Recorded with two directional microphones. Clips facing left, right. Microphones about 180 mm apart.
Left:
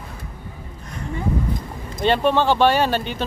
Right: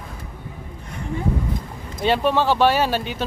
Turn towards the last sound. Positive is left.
turn(degrees=-5)  # may be behind; listen again after turning